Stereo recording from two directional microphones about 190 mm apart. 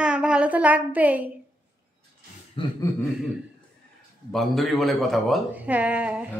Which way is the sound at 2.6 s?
25° left (ahead or behind).